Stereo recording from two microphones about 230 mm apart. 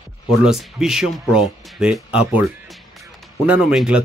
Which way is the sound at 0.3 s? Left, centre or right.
Centre.